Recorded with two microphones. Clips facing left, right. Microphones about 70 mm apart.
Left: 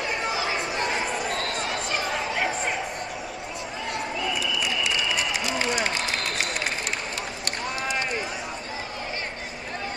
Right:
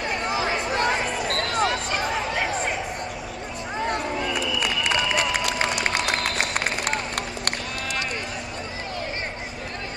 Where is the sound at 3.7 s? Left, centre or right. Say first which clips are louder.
Right 5 dB; right.